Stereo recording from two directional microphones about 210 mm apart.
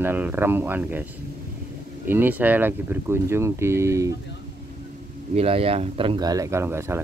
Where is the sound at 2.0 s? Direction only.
10° right (ahead or behind).